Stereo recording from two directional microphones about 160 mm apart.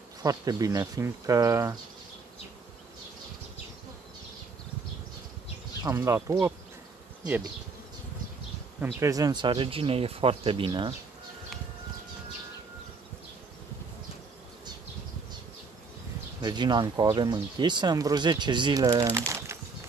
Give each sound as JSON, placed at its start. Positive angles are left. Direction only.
{"t": 0.2, "sound": "speech", "side_deg": -20}
{"t": 5.9, "sound": "speech", "side_deg": -15}
{"t": 8.8, "sound": "speech", "side_deg": -20}
{"t": 16.3, "sound": "speech", "side_deg": -25}